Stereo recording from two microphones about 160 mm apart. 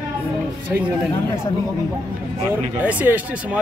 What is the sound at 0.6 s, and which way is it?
Speech, 10° right (ahead or behind).